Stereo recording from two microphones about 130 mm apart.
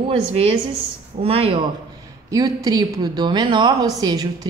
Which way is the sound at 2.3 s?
30° right (ahead or behind).